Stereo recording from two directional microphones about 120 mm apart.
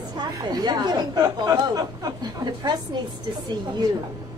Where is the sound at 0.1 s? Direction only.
35° right (ahead or behind).